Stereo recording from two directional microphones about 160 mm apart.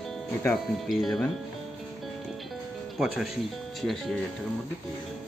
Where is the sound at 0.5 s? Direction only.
Centre (ahead or behind).